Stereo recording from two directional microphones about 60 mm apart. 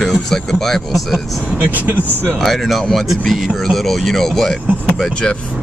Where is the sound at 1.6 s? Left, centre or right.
Right.